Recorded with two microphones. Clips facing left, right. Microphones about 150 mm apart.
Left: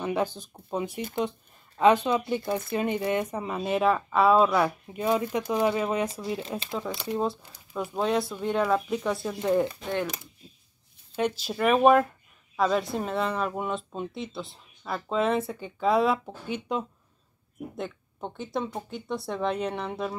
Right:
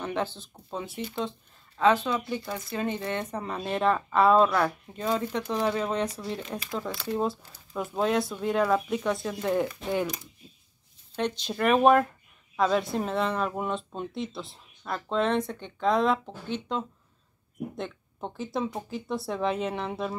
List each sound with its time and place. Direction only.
0.0 s speech: 10° left (ahead or behind)
11.1 s speech: 5° left (ahead or behind)
17.7 s speech: centre (ahead or behind)